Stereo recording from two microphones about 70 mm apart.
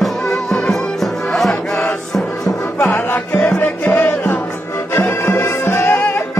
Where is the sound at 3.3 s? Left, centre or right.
Centre.